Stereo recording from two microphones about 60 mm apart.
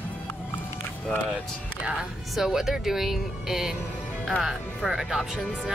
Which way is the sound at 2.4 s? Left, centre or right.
Centre.